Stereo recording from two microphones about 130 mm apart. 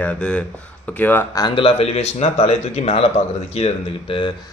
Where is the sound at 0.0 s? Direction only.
10° left (ahead or behind).